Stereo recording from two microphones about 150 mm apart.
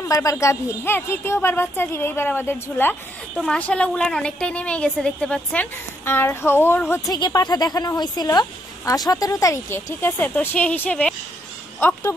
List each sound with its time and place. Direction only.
0.1 s speech: 20° left (ahead or behind)
7.2 s a woman's voice: 30° left (ahead or behind)